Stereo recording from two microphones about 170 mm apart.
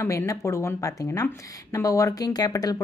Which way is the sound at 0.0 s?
15° left (ahead or behind).